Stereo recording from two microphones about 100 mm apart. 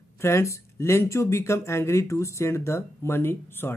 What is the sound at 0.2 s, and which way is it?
Speech, 25° left (ahead or behind).